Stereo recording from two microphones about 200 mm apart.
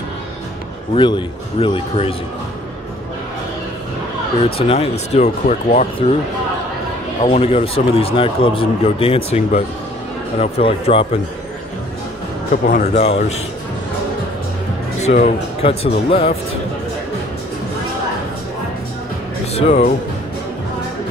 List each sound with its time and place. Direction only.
0.9 s speech: 25° left (ahead or behind)
4.6 s speech: 30° left (ahead or behind)
7.2 s speech: 30° left (ahead or behind)
12.6 s speech: 35° left (ahead or behind)
15.0 s speech: 35° left (ahead or behind)
19.5 s speech: 30° left (ahead or behind)